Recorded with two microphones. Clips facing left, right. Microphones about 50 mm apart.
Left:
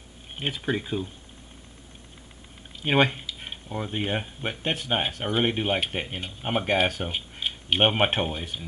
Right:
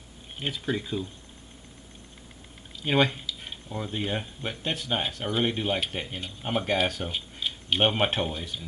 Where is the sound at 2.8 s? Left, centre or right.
Left.